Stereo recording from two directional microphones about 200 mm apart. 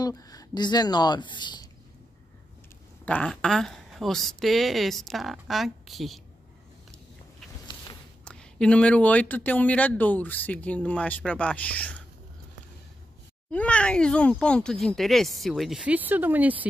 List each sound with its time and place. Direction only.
0.0 s a woman's voice: 15° left (ahead or behind)
3.1 s speech: 5° left (ahead or behind)
8.3 s speech: 5° left (ahead or behind)
13.5 s speech: 5° left (ahead or behind)